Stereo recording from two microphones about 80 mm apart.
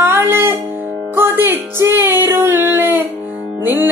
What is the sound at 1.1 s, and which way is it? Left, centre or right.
Music, right.